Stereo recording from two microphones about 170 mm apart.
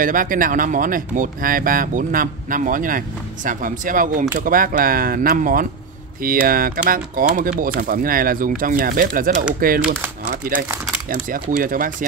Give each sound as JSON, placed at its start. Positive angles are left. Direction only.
{"t": 0.0, "sound": "speech", "side_deg": -55}
{"t": 10.2, "sound": "a sound", "side_deg": -55}
{"t": 11.1, "sound": "speech", "side_deg": -55}